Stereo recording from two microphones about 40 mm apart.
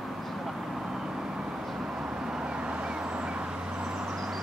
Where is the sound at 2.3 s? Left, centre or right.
Centre.